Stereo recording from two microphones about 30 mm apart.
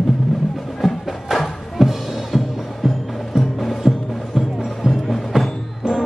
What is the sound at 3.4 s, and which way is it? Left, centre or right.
Music, centre.